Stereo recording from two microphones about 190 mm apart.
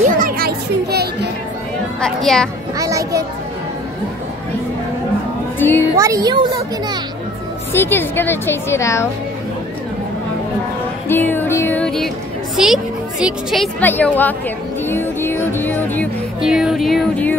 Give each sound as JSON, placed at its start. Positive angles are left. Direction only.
{"t": 0.0, "sound": "music", "side_deg": -50}
{"t": 2.0, "sound": "speech", "side_deg": 5}
{"t": 2.8, "sound": "a child's voice", "side_deg": -15}
{"t": 5.6, "sound": "speech", "side_deg": 10}
{"t": 5.9, "sound": "a child's voice", "side_deg": -15}
{"t": 7.7, "sound": "speech", "side_deg": 10}
{"t": 11.1, "sound": "speech", "side_deg": 10}
{"t": 16.3, "sound": "speech", "side_deg": -5}